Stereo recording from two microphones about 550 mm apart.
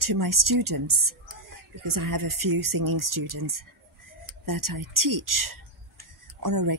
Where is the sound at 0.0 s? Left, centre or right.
Right.